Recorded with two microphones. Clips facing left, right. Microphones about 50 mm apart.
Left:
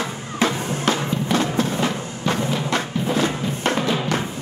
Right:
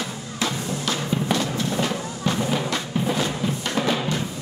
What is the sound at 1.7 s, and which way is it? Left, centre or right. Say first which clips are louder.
Music: left 2 dB; centre.